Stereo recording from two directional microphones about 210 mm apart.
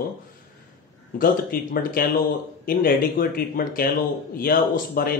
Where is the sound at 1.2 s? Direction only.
45° left (ahead or behind).